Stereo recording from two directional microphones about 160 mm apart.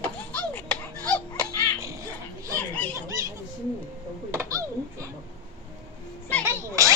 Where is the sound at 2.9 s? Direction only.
20° right (ahead or behind).